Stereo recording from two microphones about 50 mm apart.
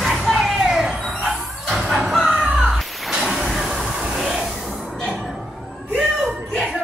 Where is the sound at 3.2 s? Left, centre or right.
Centre.